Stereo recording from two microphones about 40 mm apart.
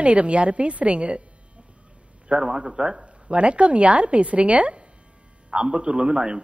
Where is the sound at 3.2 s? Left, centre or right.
Right.